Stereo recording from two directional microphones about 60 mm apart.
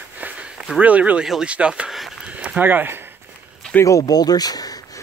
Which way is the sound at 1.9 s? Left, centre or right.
Centre.